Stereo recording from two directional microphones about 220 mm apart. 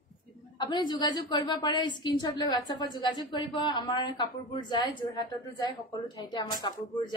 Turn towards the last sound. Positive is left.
turn(degrees=20)  # may be behind; listen again after turning